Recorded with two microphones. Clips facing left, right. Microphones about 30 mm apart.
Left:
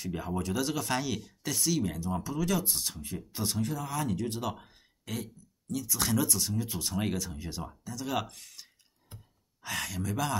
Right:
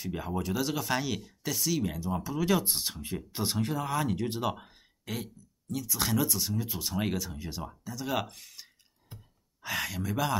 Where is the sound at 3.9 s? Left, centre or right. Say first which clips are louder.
Right 2 dB; centre.